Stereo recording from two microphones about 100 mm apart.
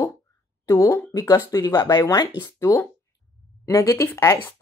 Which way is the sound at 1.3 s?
40° left (ahead or behind).